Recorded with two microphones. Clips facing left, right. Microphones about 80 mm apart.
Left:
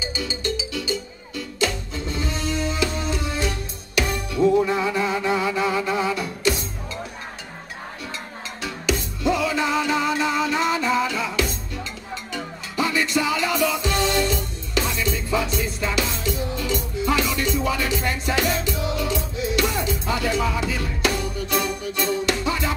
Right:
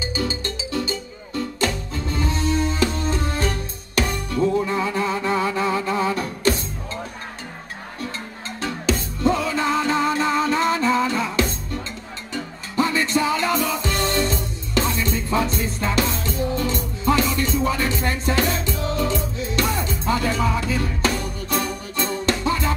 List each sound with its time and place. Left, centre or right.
0.0 s music: right
8.6 s music: right